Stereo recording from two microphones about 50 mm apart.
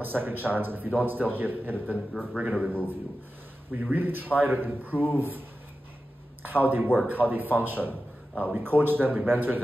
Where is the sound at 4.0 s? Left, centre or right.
Right.